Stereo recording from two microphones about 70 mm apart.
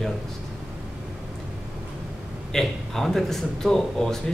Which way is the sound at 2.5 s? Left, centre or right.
Centre.